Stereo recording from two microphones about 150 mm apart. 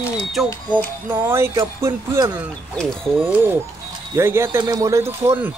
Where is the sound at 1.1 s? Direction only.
15° right (ahead or behind).